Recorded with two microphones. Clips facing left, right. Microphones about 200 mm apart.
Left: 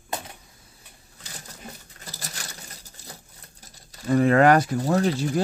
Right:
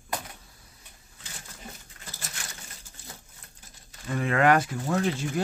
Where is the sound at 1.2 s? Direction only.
40° left (ahead or behind).